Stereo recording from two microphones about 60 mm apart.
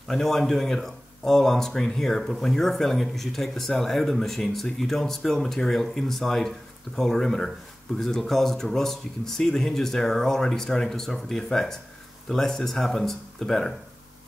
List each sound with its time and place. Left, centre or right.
0.1 s speech: centre